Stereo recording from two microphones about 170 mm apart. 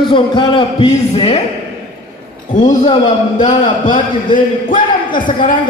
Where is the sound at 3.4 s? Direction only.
45° left (ahead or behind).